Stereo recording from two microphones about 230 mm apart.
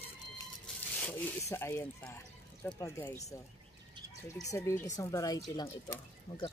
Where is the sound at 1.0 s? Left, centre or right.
Centre.